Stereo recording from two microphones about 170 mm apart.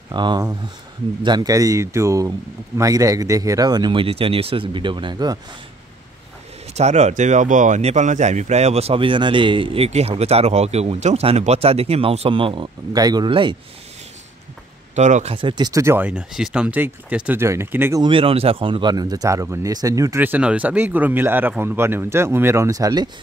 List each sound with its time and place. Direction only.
0.1 s speech: 25° right (ahead or behind)
6.7 s speech: 40° right (ahead or behind)
15.0 s speech: 45° right (ahead or behind)
15.3 s speech: 25° right (ahead or behind)
18.0 s speech: 30° right (ahead or behind)